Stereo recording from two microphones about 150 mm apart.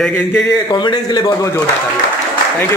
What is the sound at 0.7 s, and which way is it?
Speech, 30° left (ahead or behind).